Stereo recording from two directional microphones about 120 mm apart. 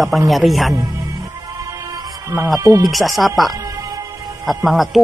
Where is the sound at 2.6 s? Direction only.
30° right (ahead or behind).